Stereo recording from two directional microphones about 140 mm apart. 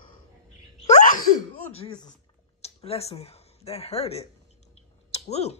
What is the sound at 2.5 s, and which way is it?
Speech, 50° left (ahead or behind).